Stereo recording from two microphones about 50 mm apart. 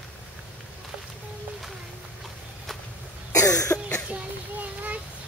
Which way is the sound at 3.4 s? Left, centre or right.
Left.